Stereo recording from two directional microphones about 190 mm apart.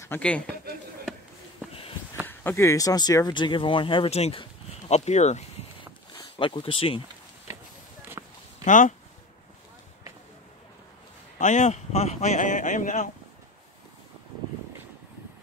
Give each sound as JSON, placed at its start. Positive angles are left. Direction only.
{"t": 0.0, "sound": "a man's voice", "side_deg": 10}
{"t": 2.2, "sound": "speech", "side_deg": 10}
{"t": 8.2, "sound": "a sound", "side_deg": -15}
{"t": 8.6, "sound": "speech", "side_deg": 40}
{"t": 11.3, "sound": "a man's voice", "side_deg": 40}